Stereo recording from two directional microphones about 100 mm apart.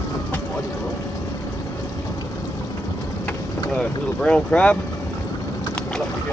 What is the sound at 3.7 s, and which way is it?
Boat, 10° left (ahead or behind).